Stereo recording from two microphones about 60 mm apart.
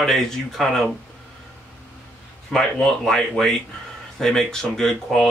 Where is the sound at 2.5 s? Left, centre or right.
Centre.